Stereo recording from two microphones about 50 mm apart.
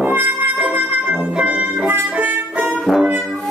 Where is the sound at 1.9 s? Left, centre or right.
Right.